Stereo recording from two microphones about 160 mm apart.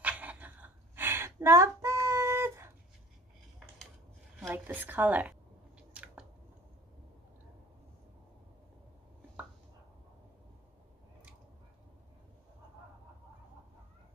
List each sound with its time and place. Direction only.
0.0 s a sound: 10° right (ahead or behind)
3.5 s dishes: centre (ahead or behind)
4.4 s a woman's voice: 10° right (ahead or behind)
5.8 s biting: 5° right (ahead or behind)